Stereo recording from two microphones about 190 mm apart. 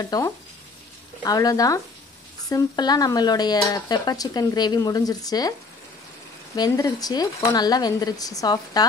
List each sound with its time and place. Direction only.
0.0 s frying: 20° left (ahead or behind)
1.2 s speech: 20° left (ahead or behind)
6.5 s speech: 20° left (ahead or behind)